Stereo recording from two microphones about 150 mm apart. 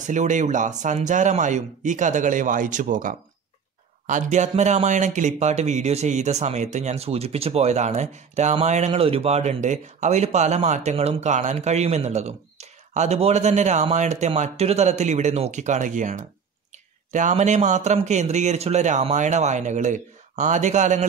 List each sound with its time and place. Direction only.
0.0 s speech: 55° right (ahead or behind)